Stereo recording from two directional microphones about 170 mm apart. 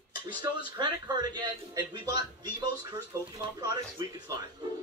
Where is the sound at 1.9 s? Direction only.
20° right (ahead or behind).